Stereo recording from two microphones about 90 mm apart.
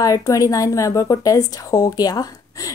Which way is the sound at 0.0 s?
40° left (ahead or behind).